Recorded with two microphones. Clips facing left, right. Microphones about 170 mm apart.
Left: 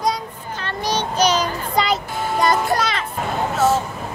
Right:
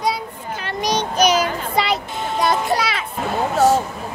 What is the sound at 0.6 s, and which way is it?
Child singing, 15° right (ahead or behind).